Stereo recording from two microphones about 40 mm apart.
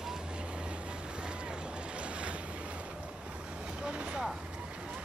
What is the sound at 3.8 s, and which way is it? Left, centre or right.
Vehicle, right.